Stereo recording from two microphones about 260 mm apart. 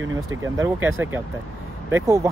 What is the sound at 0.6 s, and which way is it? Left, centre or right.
Speech, centre.